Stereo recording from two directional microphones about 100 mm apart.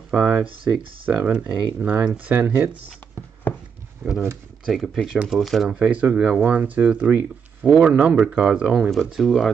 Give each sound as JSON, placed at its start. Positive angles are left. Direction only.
{"t": 0.1, "sound": "speech", "side_deg": -10}
{"t": 3.5, "sound": "a sound", "side_deg": 20}
{"t": 4.6, "sound": "speech", "side_deg": 0}